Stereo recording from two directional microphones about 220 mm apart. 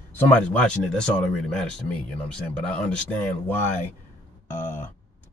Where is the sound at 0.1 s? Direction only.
5° left (ahead or behind).